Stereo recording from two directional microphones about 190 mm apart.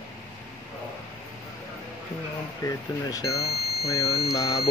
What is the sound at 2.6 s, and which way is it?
Speech, 20° left (ahead or behind).